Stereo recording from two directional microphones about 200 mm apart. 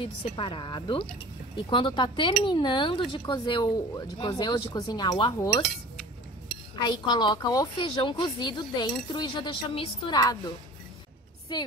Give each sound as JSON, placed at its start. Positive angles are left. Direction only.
{"t": 0.0, "sound": "a woman's voice", "side_deg": 25}
{"t": 6.8, "sound": "a woman's voice", "side_deg": 20}
{"t": 11.5, "sound": "a woman's voice", "side_deg": 20}